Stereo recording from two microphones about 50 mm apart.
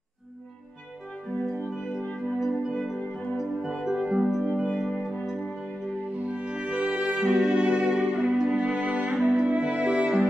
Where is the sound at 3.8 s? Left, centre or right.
Centre.